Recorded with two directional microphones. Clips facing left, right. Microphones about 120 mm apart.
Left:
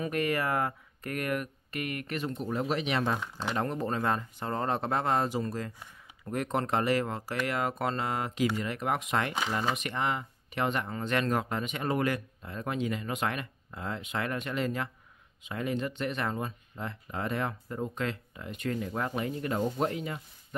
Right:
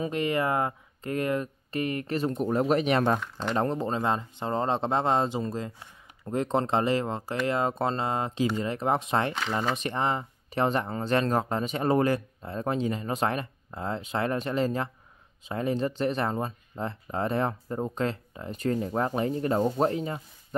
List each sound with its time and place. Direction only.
0.0 s speech: 20° right (ahead or behind); by 3.2 s 45° right (ahead or behind)
3.2 s speech: 5° left (ahead or behind)
3.5 s speech: 30° right (ahead or behind)